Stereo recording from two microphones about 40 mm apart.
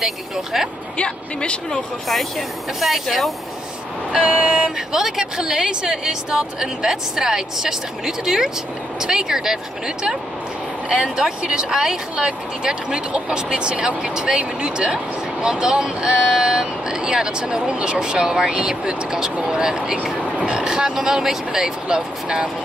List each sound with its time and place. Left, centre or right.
0.0 s speech: centre
0.9 s speech: left
2.8 s speech: centre
4.2 s vehicle: right
4.9 s speech: centre
20.0 s speech: right